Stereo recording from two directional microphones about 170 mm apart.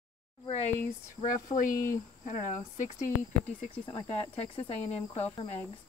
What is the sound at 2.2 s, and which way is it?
Speech, 45° left (ahead or behind).